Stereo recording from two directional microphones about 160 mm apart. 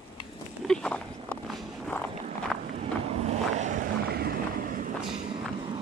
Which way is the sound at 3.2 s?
45° right (ahead or behind).